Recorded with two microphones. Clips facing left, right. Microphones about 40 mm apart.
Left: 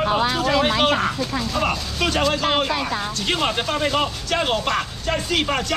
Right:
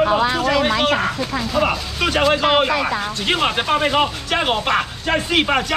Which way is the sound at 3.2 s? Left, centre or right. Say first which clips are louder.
Right 3 dB; right.